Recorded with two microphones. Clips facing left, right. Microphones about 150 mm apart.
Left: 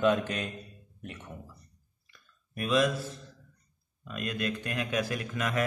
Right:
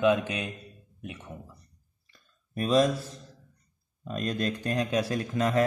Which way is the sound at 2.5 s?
35° right (ahead or behind).